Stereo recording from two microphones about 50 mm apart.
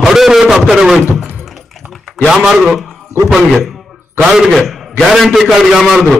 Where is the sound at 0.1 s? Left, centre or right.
Centre.